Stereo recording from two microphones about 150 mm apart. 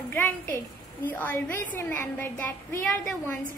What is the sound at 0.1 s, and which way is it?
A woman's voice, 15° left (ahead or behind).